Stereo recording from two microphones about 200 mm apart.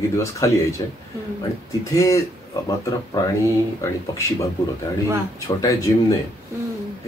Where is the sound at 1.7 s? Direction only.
15° left (ahead or behind).